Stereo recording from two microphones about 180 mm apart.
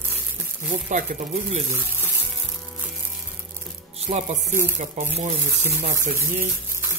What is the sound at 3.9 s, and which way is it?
Speech, 40° right (ahead or behind).